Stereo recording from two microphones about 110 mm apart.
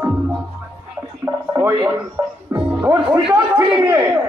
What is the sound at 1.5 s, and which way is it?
A man's voice, 25° right (ahead or behind).